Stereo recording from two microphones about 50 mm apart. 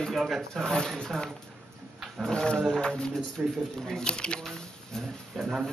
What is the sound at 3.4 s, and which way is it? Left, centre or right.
Speech, right.